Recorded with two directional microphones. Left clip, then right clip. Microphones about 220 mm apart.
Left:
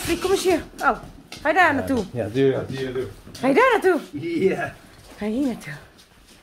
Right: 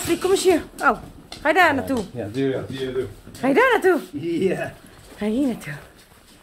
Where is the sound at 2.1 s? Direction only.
40° left (ahead or behind).